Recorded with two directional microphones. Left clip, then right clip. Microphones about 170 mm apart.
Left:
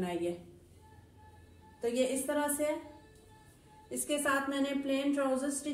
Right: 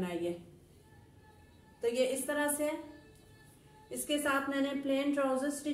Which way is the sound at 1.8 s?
10° right (ahead or behind).